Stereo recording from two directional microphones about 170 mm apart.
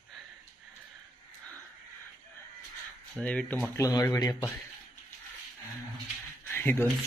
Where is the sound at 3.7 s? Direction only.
20° left (ahead or behind).